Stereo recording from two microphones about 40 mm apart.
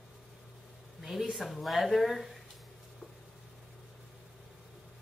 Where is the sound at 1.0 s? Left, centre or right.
Centre.